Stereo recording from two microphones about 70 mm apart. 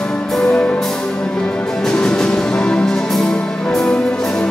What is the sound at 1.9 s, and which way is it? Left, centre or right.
Music, centre.